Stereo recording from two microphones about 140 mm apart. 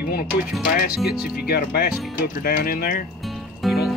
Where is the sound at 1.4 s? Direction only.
90° left.